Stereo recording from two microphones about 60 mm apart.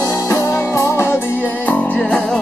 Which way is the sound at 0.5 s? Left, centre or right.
Left.